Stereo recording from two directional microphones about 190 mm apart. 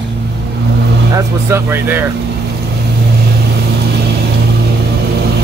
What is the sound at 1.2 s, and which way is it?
Speech, 15° right (ahead or behind).